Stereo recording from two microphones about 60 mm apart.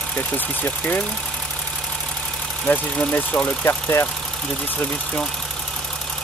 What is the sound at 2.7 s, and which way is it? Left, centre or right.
Speech, left.